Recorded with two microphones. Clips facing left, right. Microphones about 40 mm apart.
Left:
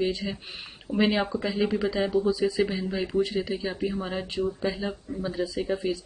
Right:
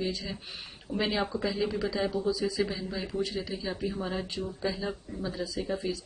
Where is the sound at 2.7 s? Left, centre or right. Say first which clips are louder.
Left 5 dB; left.